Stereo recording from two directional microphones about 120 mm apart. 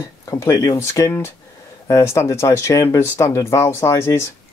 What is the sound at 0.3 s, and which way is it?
Speech, 25° left (ahead or behind).